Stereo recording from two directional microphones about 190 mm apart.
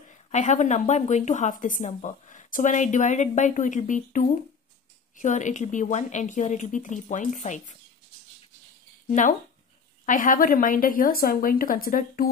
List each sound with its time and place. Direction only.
0.3 s speech: 40° left (ahead or behind)
9.0 s speech: 40° left (ahead or behind)